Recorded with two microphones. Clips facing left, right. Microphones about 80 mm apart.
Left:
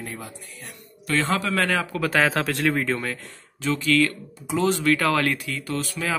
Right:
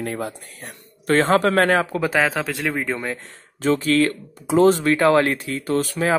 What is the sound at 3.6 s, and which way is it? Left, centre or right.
Speech, right.